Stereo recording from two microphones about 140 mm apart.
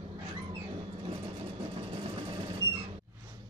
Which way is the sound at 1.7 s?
40° right (ahead or behind).